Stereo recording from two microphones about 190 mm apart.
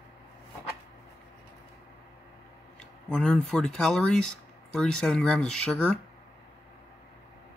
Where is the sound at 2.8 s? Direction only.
5° left (ahead or behind).